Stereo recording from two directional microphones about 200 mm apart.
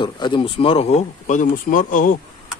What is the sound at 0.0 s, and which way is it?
Speech, 25° left (ahead or behind).